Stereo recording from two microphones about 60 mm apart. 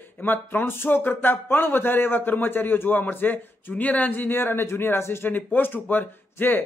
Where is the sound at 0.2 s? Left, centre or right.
Left.